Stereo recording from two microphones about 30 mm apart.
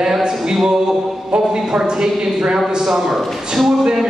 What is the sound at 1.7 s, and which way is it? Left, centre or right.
Speech, centre.